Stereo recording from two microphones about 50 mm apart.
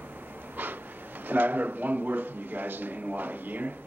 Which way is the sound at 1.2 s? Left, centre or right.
Right.